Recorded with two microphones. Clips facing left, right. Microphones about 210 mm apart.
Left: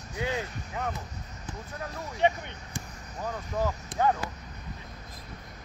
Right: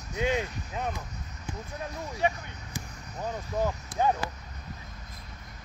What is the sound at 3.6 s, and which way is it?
Speech, 15° right (ahead or behind).